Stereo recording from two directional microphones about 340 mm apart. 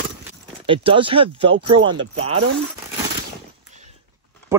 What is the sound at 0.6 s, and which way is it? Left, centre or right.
Speech, centre.